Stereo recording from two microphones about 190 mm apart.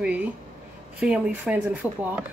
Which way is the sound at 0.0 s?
10° right (ahead or behind).